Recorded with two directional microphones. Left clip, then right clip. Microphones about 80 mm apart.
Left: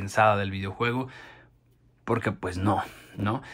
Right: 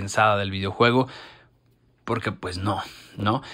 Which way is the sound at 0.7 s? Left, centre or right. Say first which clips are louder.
Right 10 dB; right.